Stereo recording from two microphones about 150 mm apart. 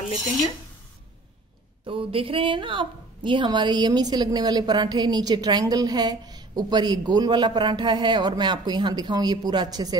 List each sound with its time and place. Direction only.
1.9 s a woman's voice: 35° right (ahead or behind)